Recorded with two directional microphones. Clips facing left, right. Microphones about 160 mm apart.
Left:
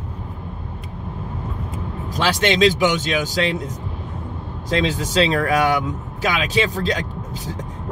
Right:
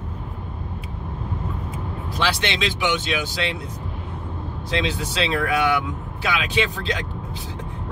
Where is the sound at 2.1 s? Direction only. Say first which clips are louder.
Left 5 dB; 45° left (ahead or behind).